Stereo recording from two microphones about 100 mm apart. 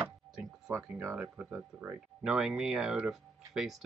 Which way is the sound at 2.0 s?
5° right (ahead or behind).